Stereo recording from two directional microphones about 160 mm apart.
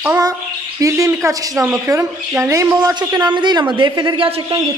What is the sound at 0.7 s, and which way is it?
A woman's voice, 20° right (ahead or behind).